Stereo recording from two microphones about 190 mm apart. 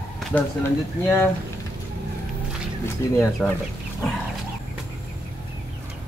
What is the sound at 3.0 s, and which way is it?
Speech, 15° left (ahead or behind).